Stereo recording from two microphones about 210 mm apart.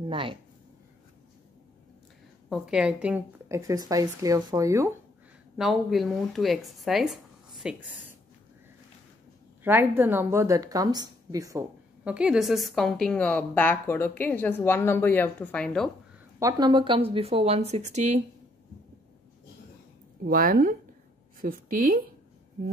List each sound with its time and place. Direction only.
0.1 s speech: 25° right (ahead or behind)
2.5 s speech: 5° right (ahead or behind)
5.6 s a woman's voice: centre (ahead or behind)
9.6 s a woman's voice: 10° right (ahead or behind)
16.3 s speech: 15° right (ahead or behind)
20.2 s a woman's voice: 45° right (ahead or behind)